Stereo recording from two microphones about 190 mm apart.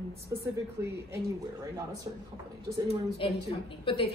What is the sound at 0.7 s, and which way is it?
A woman's voice, 15° right (ahead or behind).